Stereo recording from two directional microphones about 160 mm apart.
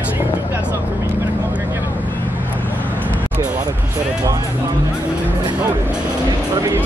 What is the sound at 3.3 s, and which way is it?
Vehicle, 10° right (ahead or behind).